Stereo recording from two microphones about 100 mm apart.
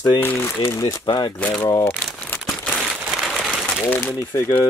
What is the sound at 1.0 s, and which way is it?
Speech, 50° left (ahead or behind).